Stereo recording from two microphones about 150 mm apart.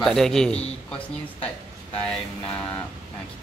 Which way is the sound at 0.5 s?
40° left (ahead or behind).